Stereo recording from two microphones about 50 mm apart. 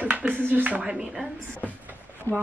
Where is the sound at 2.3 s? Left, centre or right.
Left.